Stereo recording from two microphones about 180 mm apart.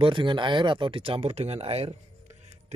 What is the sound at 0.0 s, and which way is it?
Speech, 25° right (ahead or behind).